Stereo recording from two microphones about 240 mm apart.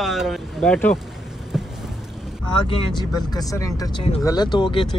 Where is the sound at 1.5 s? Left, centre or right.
Centre.